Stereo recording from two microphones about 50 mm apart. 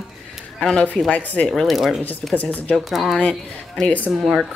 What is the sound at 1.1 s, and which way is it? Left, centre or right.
Speech, left.